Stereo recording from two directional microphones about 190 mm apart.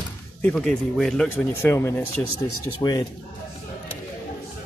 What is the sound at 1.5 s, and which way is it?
Speech, 15° left (ahead or behind).